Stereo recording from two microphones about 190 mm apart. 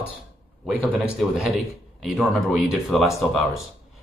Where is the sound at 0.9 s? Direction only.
Centre (ahead or behind).